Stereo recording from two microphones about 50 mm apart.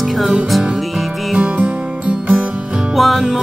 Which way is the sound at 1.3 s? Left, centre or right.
Right.